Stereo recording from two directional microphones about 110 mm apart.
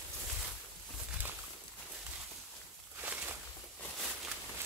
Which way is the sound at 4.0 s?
Centre (ahead or behind).